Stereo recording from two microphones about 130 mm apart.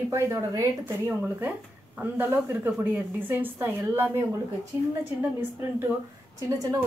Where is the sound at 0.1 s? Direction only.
20° right (ahead or behind).